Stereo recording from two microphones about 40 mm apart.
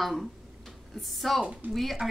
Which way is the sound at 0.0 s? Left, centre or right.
Centre.